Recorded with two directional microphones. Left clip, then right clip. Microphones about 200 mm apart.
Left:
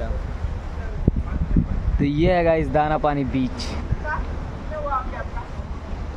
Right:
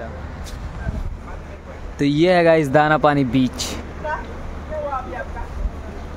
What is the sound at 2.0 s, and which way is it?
Speech, 10° right (ahead or behind).